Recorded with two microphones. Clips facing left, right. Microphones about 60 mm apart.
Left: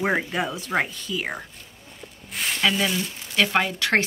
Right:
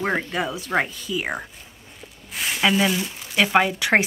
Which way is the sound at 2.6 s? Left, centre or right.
Centre.